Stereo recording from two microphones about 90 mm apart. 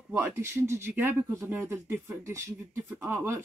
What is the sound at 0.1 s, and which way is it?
Speech, 25° right (ahead or behind).